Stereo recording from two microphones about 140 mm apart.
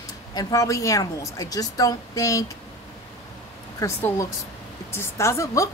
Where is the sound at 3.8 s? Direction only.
20° left (ahead or behind).